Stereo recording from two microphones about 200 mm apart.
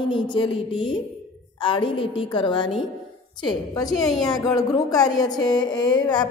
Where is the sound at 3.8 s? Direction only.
Centre (ahead or behind).